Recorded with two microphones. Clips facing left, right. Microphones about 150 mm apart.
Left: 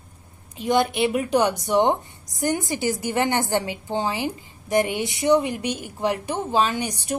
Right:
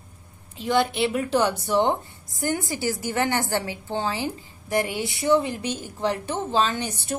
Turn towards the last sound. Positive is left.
turn(degrees=15)  # may be behind; listen again after turning